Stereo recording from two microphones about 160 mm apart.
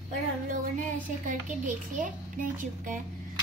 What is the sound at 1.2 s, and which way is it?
Speech, 55° right (ahead or behind).